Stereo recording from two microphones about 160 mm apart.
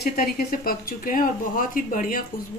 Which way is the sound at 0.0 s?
65° left (ahead or behind).